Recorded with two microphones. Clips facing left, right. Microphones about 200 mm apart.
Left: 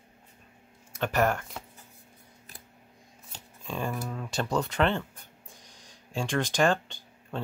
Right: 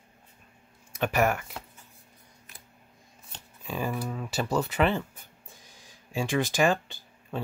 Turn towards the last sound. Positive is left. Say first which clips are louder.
# right 1 dB
turn(degrees=-5)  # may be behind; listen again after turning